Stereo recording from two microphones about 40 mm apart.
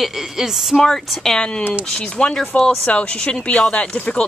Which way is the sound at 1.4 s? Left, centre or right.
Left.